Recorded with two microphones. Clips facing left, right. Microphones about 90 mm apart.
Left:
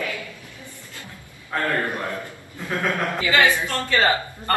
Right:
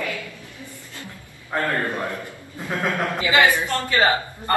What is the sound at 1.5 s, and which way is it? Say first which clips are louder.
Speech: right 1 dB; 15° right (ahead or behind).